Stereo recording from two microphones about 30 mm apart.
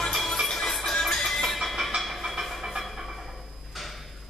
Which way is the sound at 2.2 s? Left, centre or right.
Centre.